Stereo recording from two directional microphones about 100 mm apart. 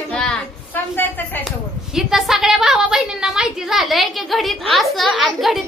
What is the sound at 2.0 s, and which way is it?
A woman's voice, 5° right (ahead or behind).